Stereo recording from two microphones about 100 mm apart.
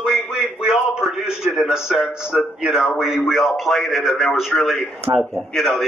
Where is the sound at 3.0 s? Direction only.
5° right (ahead or behind).